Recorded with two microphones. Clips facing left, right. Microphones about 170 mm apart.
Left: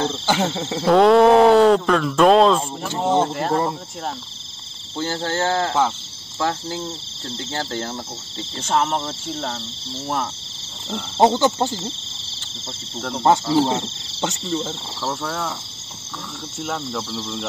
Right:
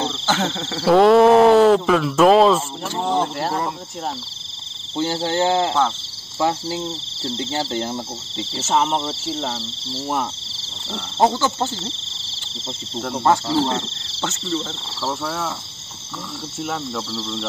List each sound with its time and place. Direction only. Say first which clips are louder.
0.1 s speech: left 1 dB; 15° left (ahead or behind)
0.8 s speech: right 1 dB; centre (ahead or behind)
2.9 s speech: left 2 dB; 20° left (ahead or behind)
4.9 s speech: right 3 dB; 15° right (ahead or behind)
11.1 s speech: left 2 dB; 20° left (ahead or behind)
13.2 s speech: left 2 dB; 15° left (ahead or behind)
15.0 s speech: right 1 dB; 5° right (ahead or behind)
17.1 s speech: right 1 dB; 10° left (ahead or behind)